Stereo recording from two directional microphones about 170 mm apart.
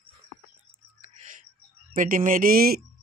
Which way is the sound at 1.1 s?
45° right (ahead or behind).